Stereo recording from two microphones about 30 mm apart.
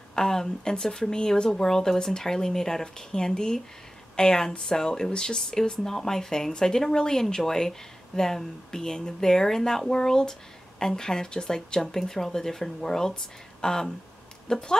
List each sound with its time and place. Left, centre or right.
0.1 s speech: left